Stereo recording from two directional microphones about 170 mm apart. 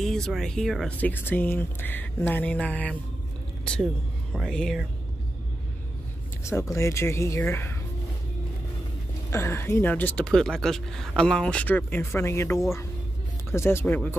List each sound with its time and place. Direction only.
0.0 s speech: centre (ahead or behind)
4.3 s speech: 5° left (ahead or behind)
6.4 s speech: 15° left (ahead or behind)
9.3 s speech: 15° left (ahead or behind)